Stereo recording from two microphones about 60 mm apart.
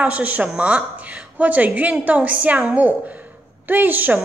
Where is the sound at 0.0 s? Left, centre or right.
Right.